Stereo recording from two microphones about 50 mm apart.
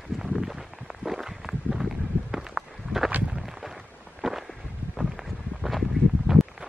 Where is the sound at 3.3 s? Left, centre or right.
Centre.